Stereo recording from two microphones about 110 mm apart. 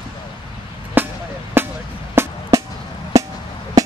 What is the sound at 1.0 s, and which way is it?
Music, 20° right (ahead or behind).